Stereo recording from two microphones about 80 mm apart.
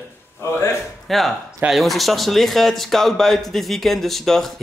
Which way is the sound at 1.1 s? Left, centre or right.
Centre.